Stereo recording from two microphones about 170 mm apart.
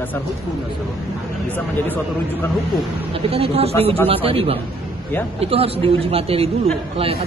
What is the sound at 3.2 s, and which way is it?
Speech, 35° right (ahead or behind).